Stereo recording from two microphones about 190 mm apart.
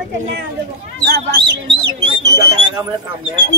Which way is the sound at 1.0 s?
60° right (ahead or behind).